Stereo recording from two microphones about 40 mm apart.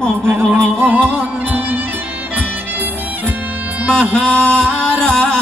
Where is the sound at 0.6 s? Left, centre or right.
Right.